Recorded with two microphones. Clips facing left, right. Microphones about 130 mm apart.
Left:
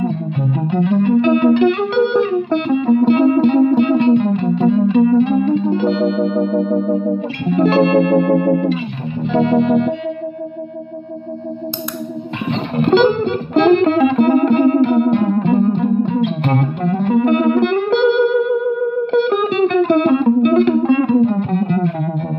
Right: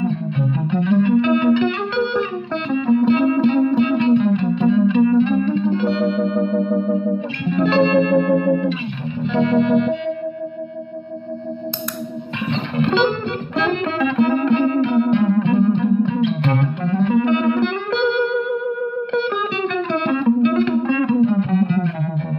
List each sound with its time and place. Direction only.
0.7 s music: 40° left (ahead or behind)
5.9 s music: centre (ahead or behind)
7.4 s music: 40° left (ahead or behind)
12.4 s music: 40° left (ahead or behind)
19.2 s music: 40° left (ahead or behind)